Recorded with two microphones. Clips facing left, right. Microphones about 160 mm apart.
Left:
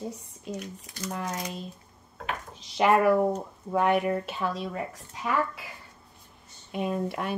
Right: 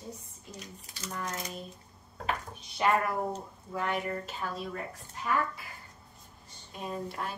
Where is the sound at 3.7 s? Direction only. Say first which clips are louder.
Left 9 dB; 60° left (ahead or behind); by 4.6 s 80° left.